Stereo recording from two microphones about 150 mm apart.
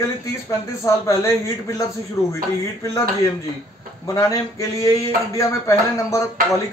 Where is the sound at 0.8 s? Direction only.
20° left (ahead or behind).